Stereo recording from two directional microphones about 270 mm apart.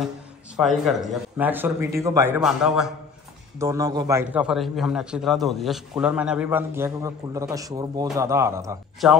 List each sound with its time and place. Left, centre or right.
0.6 s a man's voice: centre